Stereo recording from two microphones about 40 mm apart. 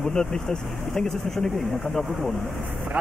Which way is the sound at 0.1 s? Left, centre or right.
Centre.